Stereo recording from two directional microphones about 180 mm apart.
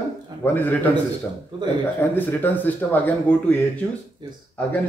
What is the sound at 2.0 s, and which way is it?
A man's voice, 10° left (ahead or behind).